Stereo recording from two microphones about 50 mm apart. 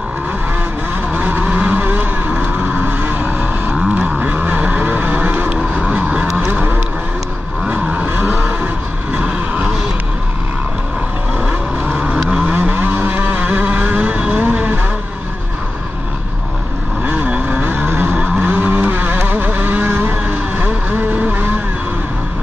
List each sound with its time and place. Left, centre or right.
1.1 s vehicle: right
8.0 s vehicle: right
9.1 s a sound: right
11.4 s vehicle: right
12.5 s vehicle: right
17.0 s vehicle: right